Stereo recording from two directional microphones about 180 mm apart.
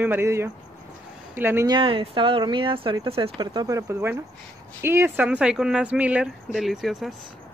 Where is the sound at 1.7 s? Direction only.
30° right (ahead or behind); by 7.2 s centre (ahead or behind).